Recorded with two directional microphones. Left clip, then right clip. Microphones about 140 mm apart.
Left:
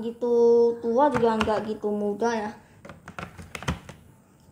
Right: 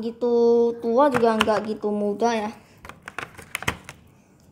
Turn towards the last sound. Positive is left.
turn(degrees=-50)  # may be behind; listen again after turning